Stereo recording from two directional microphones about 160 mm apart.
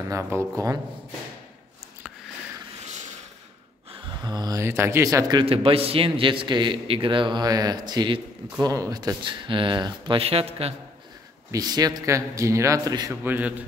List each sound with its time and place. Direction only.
0.1 s a man's voice: 20° right (ahead or behind)
3.9 s speech: 25° right (ahead or behind)
5.4 s a man's voice: 35° right (ahead or behind)
11.5 s a man's voice: 25° right (ahead or behind)
13.2 s a man's voice: 10° right (ahead or behind)